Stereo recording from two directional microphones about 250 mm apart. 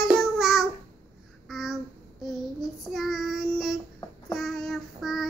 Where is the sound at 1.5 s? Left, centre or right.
Centre.